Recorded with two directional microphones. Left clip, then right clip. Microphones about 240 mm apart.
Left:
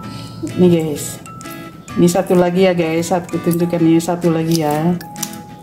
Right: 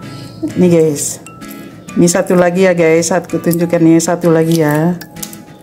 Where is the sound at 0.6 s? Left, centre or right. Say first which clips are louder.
Right 5 dB; right.